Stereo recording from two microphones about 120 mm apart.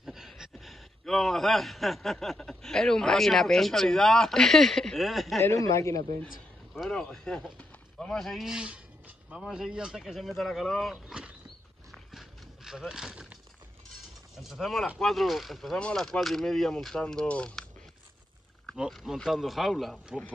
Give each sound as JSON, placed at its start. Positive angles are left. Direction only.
{"t": 0.0, "sound": "speech", "side_deg": -5}
{"t": 5.4, "sound": "speech", "side_deg": 25}
{"t": 6.7, "sound": "speech", "side_deg": 5}
{"t": 11.9, "sound": "a sound", "side_deg": 0}
{"t": 14.3, "sound": "speech", "side_deg": 0}
{"t": 18.7, "sound": "speech", "side_deg": 0}